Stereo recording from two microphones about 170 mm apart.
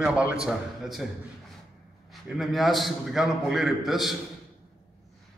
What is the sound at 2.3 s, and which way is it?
A man's voice, centre (ahead or behind).